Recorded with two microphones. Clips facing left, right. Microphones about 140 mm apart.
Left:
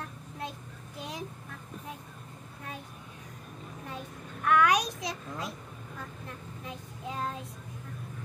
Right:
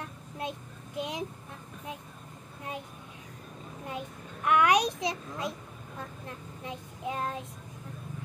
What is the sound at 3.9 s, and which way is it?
A child's voice, 20° right (ahead or behind).